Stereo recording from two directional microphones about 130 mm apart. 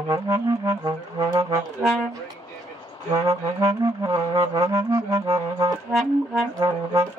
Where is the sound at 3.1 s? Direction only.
25° right (ahead or behind).